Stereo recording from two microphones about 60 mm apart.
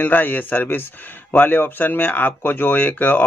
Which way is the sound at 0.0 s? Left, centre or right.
Left.